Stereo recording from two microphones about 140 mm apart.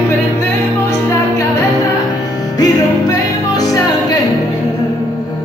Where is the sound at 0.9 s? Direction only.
20° left (ahead or behind).